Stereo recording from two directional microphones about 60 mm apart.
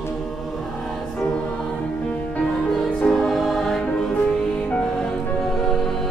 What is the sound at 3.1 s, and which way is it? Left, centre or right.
Music, centre.